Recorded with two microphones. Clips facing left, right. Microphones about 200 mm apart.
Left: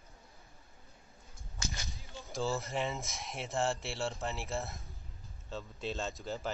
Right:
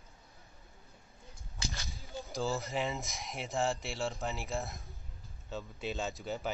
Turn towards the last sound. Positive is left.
turn(degrees=0)  # may be behind; listen again after turning